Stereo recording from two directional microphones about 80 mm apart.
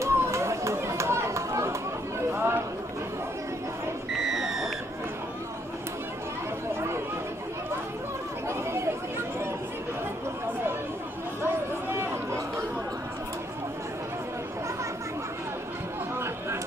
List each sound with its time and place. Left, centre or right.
0.0 s chatter: right
4.2 s a sound: centre
8.5 s chatter: right
11.4 s chatter: right